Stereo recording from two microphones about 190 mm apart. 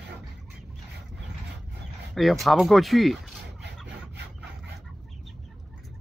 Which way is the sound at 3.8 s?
65° right (ahead or behind).